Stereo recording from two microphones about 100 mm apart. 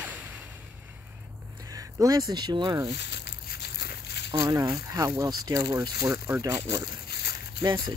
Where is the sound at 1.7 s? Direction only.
35° right (ahead or behind).